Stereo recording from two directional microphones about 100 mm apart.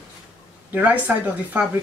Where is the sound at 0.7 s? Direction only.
15° right (ahead or behind).